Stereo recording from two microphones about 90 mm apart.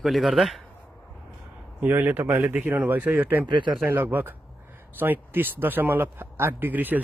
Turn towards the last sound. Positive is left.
turn(degrees=-20)  # may be behind; listen again after turning